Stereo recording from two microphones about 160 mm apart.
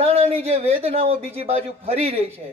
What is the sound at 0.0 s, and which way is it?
A man's voice, 40° right (ahead or behind).